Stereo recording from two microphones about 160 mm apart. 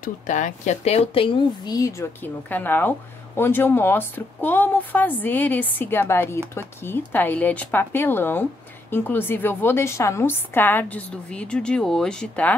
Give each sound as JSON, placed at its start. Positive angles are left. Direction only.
{"t": 0.0, "sound": "a woman's voice", "side_deg": 50}